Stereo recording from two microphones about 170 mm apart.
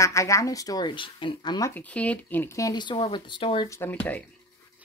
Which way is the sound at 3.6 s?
15° left (ahead or behind).